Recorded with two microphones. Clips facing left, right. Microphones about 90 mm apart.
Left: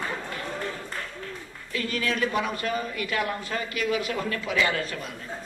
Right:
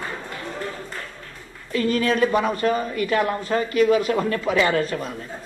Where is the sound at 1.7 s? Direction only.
35° right (ahead or behind).